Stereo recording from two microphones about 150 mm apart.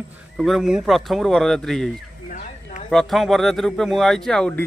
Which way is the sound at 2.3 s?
55° left (ahead or behind).